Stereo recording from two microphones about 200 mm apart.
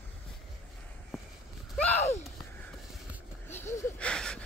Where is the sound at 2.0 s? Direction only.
35° left (ahead or behind).